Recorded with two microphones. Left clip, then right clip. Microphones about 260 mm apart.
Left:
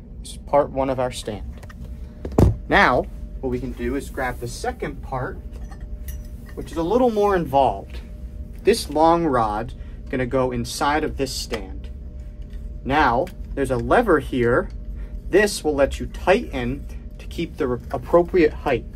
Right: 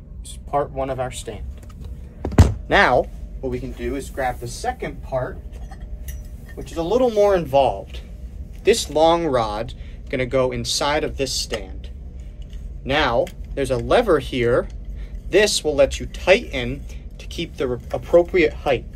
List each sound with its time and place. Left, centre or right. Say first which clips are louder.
0.3 s speech: left 4 dB; left
2.7 s speech: right 1 dB; left
3.4 s speech: even; centre
6.7 s speech: even; centre
12.8 s speech: even; centre